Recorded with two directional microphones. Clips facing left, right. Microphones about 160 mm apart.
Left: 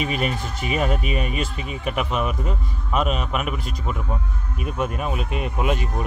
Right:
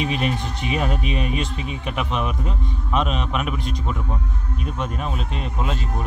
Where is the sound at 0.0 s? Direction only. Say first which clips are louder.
Right 1 dB; 5° left (ahead or behind).